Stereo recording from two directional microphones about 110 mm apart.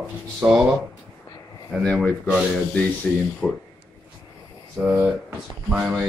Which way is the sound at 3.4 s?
20° left (ahead or behind).